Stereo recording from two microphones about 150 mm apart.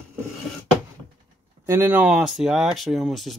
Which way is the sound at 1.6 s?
15° right (ahead or behind).